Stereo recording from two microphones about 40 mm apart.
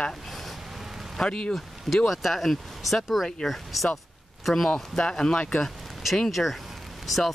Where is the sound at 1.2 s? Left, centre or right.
Left.